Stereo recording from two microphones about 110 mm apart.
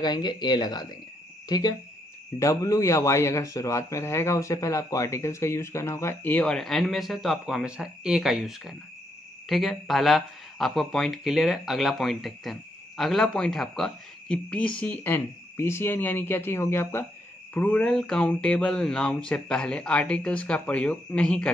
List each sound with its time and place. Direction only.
0.0 s speech: 40° left (ahead or behind)
2.3 s speech: 25° left (ahead or behind); by 21.5 s 10° left (ahead or behind)